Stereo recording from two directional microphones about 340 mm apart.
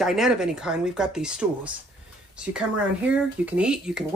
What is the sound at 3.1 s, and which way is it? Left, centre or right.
Speech, centre.